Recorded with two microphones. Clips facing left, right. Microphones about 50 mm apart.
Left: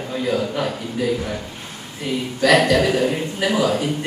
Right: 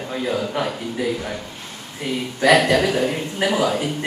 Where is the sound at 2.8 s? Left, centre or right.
Centre.